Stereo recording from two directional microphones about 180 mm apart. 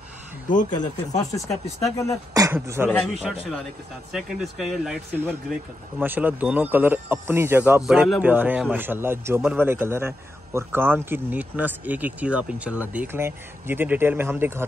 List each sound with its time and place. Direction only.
0.5 s speech: 45° left (ahead or behind)
0.7 s speech: 20° left (ahead or behind)
2.3 s speech: 15° right (ahead or behind)
2.9 s speech: 5° left (ahead or behind); by 14.7 s 15° right (ahead or behind)